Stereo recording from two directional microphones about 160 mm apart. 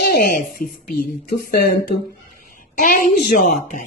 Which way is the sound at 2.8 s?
60° left (ahead or behind).